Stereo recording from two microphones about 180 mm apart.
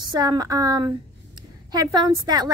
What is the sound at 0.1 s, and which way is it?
A woman's voice, 20° right (ahead or behind).